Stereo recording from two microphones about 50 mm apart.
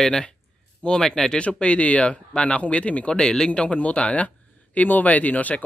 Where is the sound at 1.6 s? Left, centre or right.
Left.